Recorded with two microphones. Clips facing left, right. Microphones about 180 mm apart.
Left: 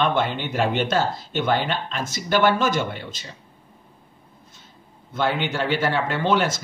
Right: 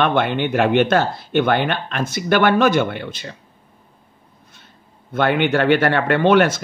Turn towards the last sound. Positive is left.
turn(degrees=-65)  # may be behind; listen again after turning